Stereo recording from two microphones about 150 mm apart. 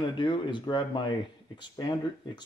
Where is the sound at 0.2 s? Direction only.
30° left (ahead or behind).